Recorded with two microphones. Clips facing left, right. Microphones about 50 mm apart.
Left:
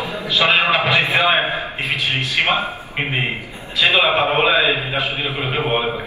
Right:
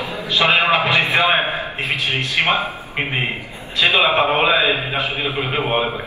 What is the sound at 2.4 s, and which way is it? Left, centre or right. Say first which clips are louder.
A man's voice: right 1 dB; centre.